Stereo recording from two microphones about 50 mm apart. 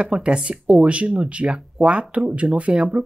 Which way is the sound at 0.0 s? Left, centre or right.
Right.